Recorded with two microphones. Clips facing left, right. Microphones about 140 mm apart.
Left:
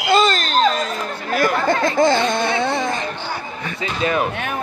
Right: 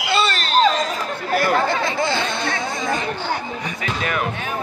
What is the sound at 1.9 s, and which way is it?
Speech, 45° left (ahead or behind).